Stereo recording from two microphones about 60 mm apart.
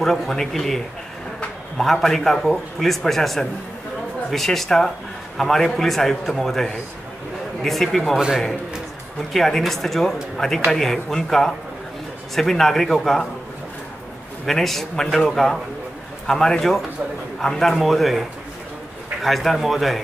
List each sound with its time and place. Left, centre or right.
0.0 s a man's voice: centre
9.3 s a man's voice: centre
14.4 s a man's voice: centre
19.2 s a man's voice: centre